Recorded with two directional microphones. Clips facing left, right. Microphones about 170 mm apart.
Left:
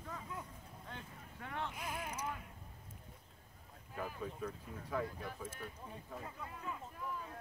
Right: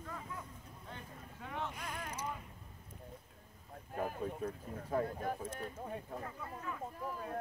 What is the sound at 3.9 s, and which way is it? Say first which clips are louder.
Speech: right 5 dB; 50° right (ahead or behind).